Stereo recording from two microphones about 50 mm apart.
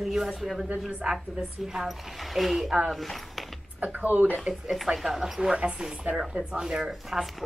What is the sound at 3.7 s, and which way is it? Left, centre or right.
Speech, right.